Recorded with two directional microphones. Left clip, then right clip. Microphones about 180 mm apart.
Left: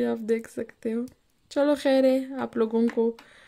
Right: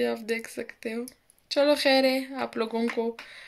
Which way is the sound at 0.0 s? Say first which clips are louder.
Left 2 dB; 75° left (ahead or behind).